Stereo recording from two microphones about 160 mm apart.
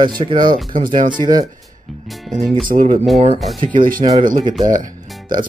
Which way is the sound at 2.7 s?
55° right (ahead or behind).